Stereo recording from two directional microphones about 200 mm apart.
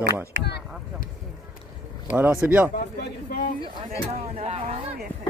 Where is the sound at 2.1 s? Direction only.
10° right (ahead or behind).